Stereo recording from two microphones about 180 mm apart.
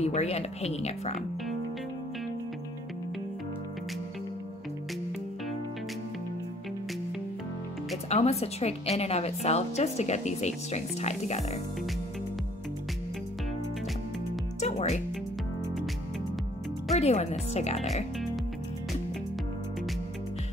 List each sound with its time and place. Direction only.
0.0 s a woman's voice: 35° left (ahead or behind)
8.1 s a woman's voice: 35° left (ahead or behind)
14.6 s music: 35° left (ahead or behind)
16.9 s a woman's voice: 40° left (ahead or behind)